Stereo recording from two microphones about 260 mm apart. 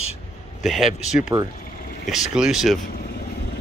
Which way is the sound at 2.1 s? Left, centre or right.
Centre.